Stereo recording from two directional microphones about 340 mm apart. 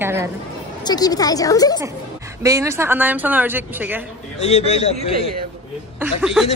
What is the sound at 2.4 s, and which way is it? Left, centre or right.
Speech, centre.